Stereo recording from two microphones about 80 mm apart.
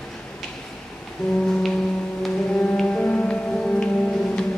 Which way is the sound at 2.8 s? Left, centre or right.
Centre.